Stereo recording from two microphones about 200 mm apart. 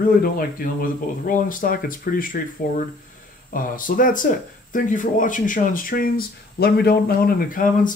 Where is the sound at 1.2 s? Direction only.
45° left (ahead or behind).